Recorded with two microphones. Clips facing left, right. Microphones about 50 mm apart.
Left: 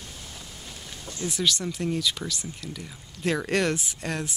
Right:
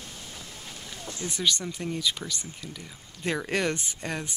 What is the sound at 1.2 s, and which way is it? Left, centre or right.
Speech, centre.